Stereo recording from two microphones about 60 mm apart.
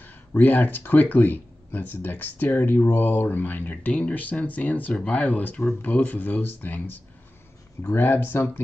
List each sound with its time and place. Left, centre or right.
0.0 s speech: left